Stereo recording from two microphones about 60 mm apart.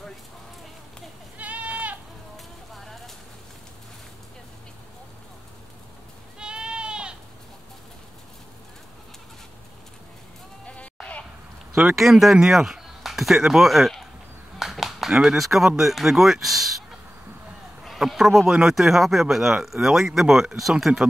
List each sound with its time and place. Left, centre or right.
1.4 s goat: right
2.3 s a sound: centre
6.4 s sheep: centre
10.6 s sheep: centre
11.9 s speech: centre
17.8 s a sound: centre
18.5 s speech: centre